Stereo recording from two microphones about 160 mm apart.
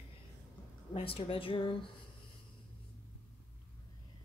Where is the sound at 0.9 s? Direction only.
35° left (ahead or behind).